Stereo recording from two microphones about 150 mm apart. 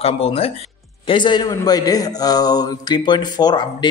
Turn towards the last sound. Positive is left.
turn(degrees=30)  # may be behind; listen again after turning